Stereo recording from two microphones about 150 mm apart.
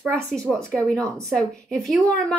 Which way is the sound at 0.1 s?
5° left (ahead or behind).